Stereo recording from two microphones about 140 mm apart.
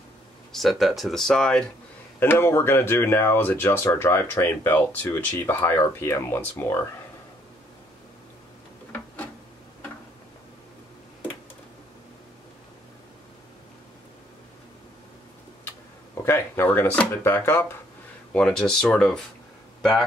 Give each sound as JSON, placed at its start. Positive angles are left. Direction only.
{"t": 0.5, "sound": "speech", "side_deg": 0}
{"t": 2.1, "sound": "speech", "side_deg": 15}
{"t": 8.9, "sound": "a sound", "side_deg": 10}
{"t": 16.3, "sound": "speech", "side_deg": 15}
{"t": 18.3, "sound": "speech", "side_deg": 5}